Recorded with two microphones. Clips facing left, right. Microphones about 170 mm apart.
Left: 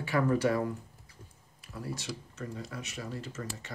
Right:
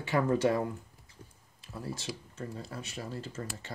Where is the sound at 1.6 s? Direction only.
25° right (ahead or behind).